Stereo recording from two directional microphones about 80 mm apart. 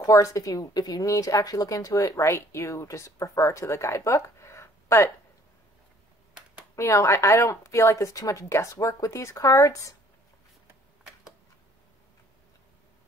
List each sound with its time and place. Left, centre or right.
0.0 s a woman's voice: left
6.7 s a woman's voice: left